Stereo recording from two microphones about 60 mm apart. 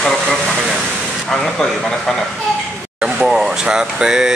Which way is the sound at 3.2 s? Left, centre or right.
Centre.